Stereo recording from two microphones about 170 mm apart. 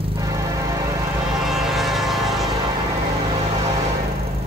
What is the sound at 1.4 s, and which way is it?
Insect, centre (ahead or behind).